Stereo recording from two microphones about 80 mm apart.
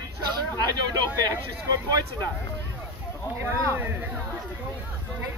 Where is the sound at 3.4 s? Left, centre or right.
Right.